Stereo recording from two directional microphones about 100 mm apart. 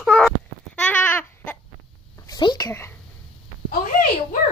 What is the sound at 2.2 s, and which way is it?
Speech, 40° left (ahead or behind).